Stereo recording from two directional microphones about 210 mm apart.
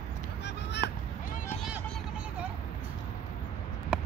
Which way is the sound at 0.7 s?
55° left (ahead or behind).